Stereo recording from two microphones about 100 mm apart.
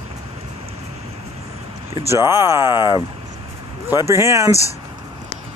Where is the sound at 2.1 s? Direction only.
25° right (ahead or behind).